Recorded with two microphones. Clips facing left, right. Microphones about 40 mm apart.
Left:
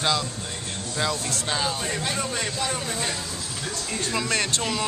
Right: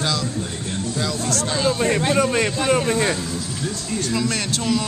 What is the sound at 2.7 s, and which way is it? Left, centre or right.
Speech, right.